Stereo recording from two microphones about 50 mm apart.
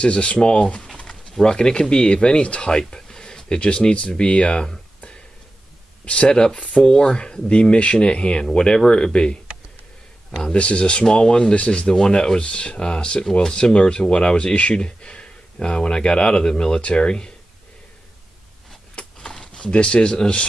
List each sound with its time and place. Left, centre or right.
0.0 s speech: left
10.5 s speech: left
19.1 s a sound: centre